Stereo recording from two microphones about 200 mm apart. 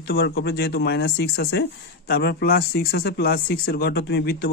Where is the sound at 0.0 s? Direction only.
55° left (ahead or behind).